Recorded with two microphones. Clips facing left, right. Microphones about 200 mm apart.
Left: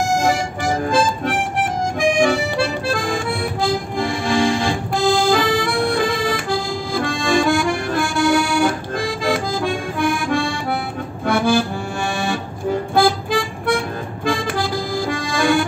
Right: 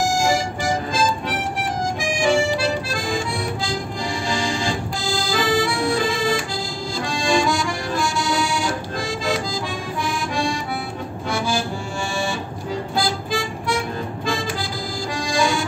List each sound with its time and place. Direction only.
0.0 s music: 60° left (ahead or behind)
11.2 s accordion: 60° left (ahead or behind)
12.9 s music: 60° left (ahead or behind)
14.2 s accordion: 55° left (ahead or behind)